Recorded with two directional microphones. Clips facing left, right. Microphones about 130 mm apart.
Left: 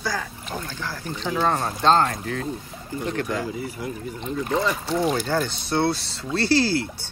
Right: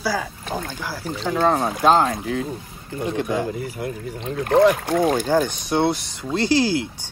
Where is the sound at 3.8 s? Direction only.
55° right (ahead or behind).